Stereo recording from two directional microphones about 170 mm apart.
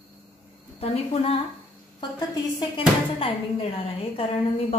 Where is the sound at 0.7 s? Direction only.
35° left (ahead or behind).